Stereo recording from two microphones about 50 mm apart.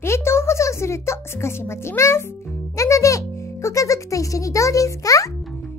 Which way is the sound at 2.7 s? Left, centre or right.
Left.